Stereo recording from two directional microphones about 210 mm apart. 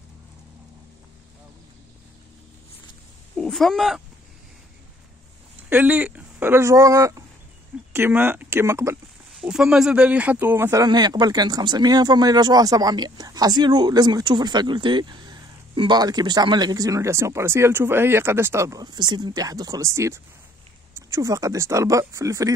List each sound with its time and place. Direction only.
3.3 s speech: centre (ahead or behind)
5.7 s speech: 10° right (ahead or behind)
9.3 s speech: centre (ahead or behind)